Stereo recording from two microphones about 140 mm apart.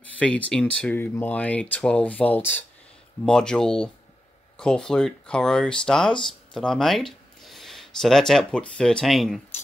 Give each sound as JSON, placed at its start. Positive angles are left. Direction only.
{"t": 0.5, "sound": "speech", "side_deg": 5}